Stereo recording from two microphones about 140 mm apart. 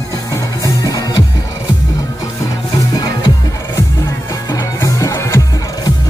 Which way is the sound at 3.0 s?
30° left (ahead or behind).